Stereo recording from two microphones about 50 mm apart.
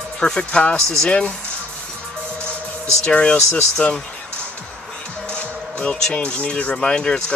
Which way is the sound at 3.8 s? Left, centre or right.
Left.